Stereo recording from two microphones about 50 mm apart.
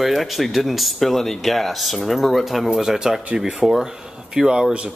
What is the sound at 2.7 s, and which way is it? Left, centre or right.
Speech, centre.